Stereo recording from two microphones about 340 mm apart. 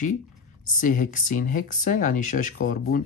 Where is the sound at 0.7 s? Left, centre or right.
Left.